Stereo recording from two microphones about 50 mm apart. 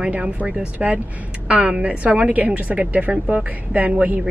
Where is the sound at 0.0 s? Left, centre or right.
Right.